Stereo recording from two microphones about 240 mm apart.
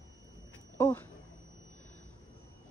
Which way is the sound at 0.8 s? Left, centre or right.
Centre.